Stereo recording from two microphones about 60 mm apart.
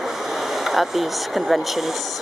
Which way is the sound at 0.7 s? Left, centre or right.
Centre.